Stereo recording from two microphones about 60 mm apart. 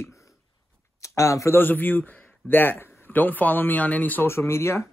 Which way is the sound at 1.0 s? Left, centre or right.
Left.